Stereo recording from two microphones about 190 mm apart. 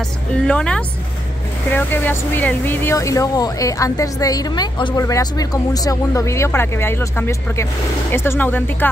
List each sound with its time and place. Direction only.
0.5 s speech: 5° left (ahead or behind)